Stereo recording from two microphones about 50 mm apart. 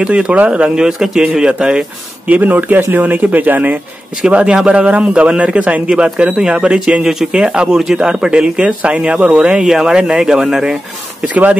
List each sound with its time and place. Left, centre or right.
0.0 s speech: right
0.7 s speech: centre
2.2 s speech: right
4.3 s speech: right